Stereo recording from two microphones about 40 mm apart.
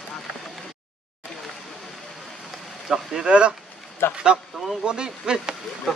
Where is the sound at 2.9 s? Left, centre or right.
Centre.